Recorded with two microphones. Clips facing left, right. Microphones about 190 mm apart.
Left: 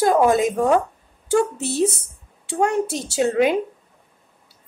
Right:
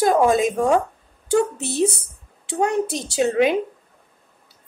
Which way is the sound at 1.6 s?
15° right (ahead or behind).